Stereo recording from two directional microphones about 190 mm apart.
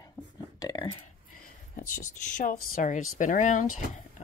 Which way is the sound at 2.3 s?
45° left (ahead or behind).